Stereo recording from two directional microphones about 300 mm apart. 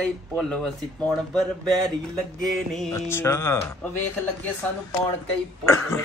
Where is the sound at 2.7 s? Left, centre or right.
Centre.